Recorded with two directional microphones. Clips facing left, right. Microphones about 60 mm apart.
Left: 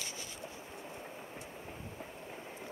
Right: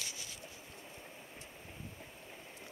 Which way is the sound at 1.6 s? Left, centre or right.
Left.